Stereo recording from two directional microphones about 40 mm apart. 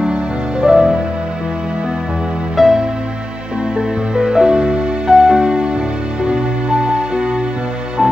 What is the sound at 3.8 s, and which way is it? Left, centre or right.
Music, centre.